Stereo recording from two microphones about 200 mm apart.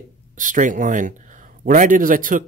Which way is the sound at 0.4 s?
40° right (ahead or behind).